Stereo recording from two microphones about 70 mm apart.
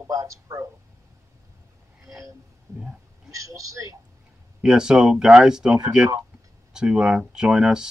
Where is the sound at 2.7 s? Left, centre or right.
Right.